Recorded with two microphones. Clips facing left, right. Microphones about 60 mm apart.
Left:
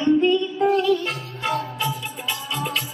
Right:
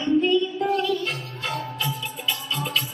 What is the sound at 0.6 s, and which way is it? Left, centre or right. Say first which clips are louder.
Music: left 4 dB; centre.